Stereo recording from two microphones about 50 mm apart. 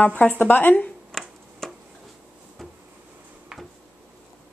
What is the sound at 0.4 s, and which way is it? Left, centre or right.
Speech, left.